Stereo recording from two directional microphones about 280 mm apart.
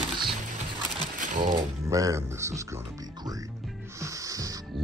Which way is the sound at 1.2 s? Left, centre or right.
Right.